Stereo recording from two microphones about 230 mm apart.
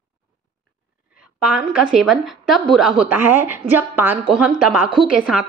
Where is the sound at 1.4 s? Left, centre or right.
Centre.